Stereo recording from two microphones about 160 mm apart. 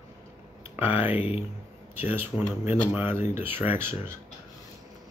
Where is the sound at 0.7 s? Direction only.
10° right (ahead or behind).